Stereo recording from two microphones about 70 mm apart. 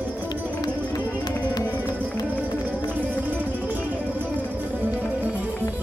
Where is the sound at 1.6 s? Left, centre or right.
Right.